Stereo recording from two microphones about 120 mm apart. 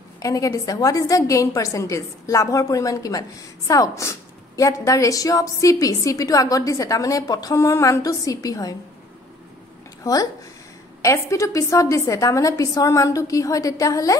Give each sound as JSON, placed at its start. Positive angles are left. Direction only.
{"t": 0.2, "sound": "a woman's voice", "side_deg": 30}
{"t": 10.1, "sound": "a woman's voice", "side_deg": 30}